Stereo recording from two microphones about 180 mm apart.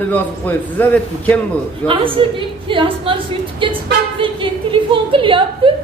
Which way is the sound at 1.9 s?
30° right (ahead or behind).